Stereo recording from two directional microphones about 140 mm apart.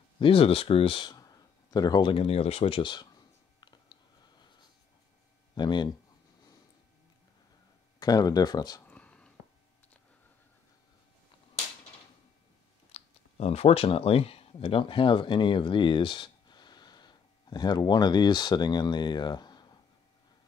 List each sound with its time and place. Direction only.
0.2 s speech: 40° left (ahead or behind)
3.6 s a sound: 30° left (ahead or behind)
5.5 s speech: 30° left (ahead or behind)
8.0 s speech: 30° left (ahead or behind)
8.8 s a sound: 10° left (ahead or behind)
12.9 s speech: 50° left (ahead or behind); by 19.8 s 30° left (ahead or behind)